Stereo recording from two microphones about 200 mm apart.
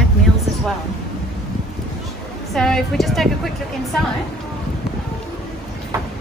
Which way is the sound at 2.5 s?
Centre (ahead or behind).